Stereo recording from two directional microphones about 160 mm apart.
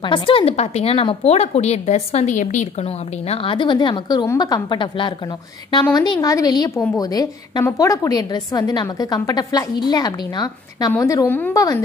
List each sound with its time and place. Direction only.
0.0 s a woman's voice: 30° left (ahead or behind)